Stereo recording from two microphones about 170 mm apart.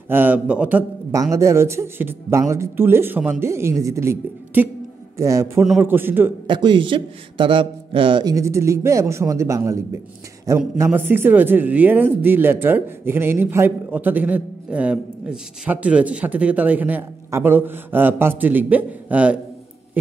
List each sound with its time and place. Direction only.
0.1 s speech: 10° right (ahead or behind)
6.4 s a man's voice: 30° right (ahead or behind); by 19.4 s 10° right (ahead or behind)